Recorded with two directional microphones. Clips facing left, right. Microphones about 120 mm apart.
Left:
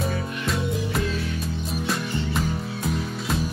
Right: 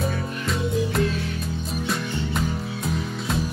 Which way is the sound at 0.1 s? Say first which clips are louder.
Even; centre (ahead or behind).